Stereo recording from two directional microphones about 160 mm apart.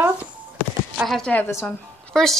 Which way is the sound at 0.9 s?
Centre (ahead or behind).